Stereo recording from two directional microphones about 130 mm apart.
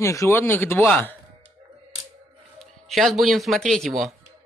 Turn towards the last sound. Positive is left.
turn(degrees=0)  # may be behind; listen again after turning